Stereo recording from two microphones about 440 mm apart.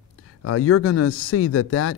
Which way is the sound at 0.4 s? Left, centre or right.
Left.